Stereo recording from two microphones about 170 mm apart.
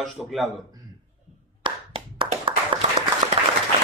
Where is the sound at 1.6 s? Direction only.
30° right (ahead or behind).